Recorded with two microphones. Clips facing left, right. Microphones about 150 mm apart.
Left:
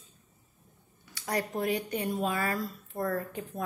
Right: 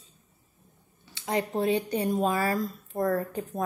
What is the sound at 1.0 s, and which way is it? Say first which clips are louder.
A woman's voice: right 3 dB; 25° right (ahead or behind).